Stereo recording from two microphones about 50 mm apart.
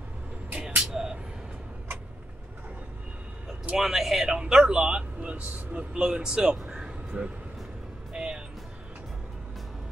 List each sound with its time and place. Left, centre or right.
0.6 s a sound: centre
3.7 s speech: centre
4.4 s a man's voice: centre
6.0 s a man's voice: centre
8.1 s music: centre